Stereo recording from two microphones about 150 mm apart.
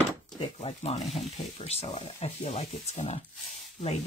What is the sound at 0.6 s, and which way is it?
Speech, 50° left (ahead or behind).